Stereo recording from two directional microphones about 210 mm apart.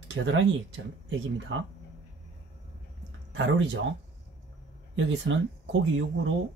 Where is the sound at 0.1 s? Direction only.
65° right (ahead or behind).